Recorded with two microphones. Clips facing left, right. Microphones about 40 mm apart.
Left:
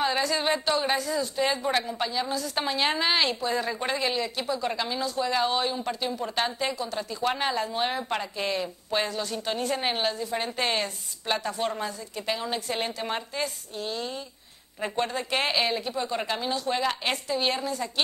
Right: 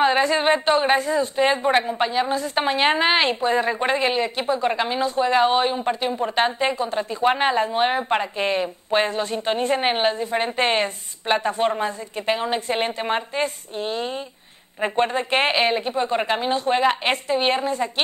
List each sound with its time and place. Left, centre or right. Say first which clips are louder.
0.0 s a woman's voice: right 7 dB; right